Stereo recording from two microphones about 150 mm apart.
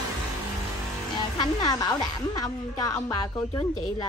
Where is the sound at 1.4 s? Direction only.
25° left (ahead or behind).